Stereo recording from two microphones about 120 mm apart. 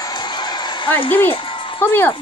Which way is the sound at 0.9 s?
15° left (ahead or behind).